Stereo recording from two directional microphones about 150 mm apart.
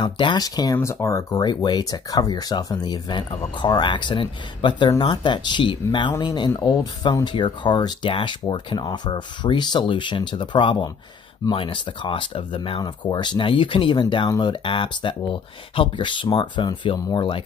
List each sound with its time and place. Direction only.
0.0 s speech: 30° left (ahead or behind)